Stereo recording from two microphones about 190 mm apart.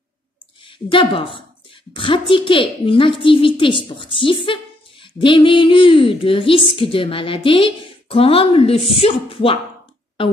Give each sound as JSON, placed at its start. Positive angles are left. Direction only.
{"t": 0.7, "sound": "a woman's voice", "side_deg": 25}